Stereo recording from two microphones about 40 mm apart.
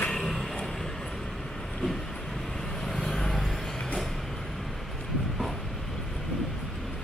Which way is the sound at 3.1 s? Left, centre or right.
Centre.